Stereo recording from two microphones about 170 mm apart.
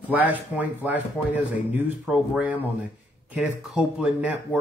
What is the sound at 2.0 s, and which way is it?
Speech, 5° right (ahead or behind).